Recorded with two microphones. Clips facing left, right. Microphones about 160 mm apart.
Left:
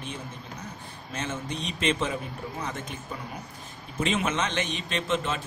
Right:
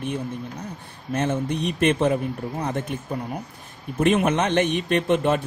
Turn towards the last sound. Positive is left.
turn(degrees=-60)  # may be behind; listen again after turning